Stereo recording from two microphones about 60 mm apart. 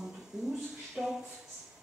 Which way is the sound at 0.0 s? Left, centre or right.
Centre.